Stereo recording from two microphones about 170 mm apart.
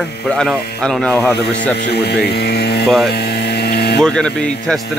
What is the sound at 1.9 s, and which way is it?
Speech, 70° left (ahead or behind).